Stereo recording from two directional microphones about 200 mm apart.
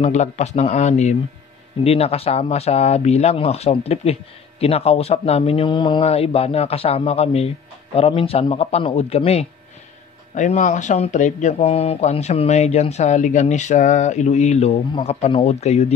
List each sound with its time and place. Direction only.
0.0 s speech: 35° left (ahead or behind)